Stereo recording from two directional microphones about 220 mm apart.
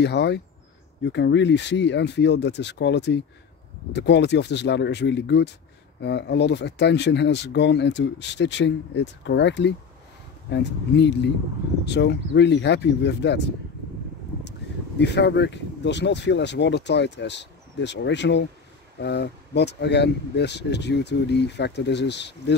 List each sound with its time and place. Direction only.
0.0 s speech: 50° left (ahead or behind)
15.0 s speech: 50° left (ahead or behind)